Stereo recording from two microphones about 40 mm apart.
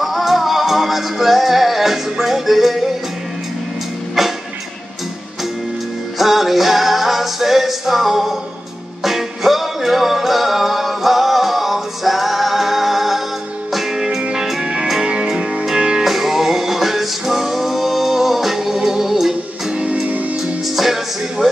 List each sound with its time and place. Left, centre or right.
0.0 s music: centre
4.2 s music: centre
6.1 s music: centre
14.6 s music: right
20.6 s music: centre